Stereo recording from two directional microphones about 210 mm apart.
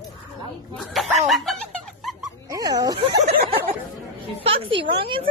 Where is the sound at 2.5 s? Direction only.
15° right (ahead or behind).